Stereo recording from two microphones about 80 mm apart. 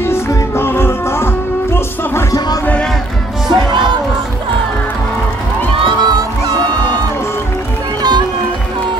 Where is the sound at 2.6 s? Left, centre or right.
Centre.